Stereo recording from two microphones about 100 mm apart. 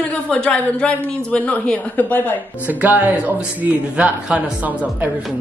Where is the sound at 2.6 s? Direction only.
15° right (ahead or behind).